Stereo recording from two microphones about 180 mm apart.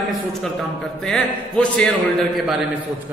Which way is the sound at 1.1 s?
5° left (ahead or behind).